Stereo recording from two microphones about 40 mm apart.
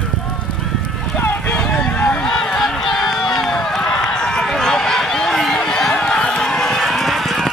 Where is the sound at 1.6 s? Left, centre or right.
Left.